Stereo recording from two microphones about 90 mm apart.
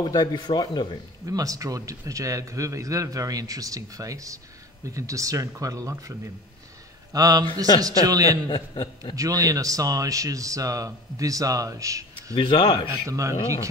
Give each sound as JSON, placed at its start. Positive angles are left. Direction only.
{"t": 0.0, "sound": "a man's voice", "side_deg": 55}
{"t": 1.2, "sound": "a man's voice", "side_deg": -40}
{"t": 8.5, "sound": "a man's voice", "side_deg": 70}
{"t": 9.1, "sound": "speech", "side_deg": -40}
{"t": 12.4, "sound": "a man's voice", "side_deg": 80}
{"t": 13.0, "sound": "speech", "side_deg": -35}